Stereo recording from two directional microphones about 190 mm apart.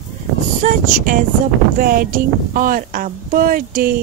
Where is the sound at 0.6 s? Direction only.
45° right (ahead or behind).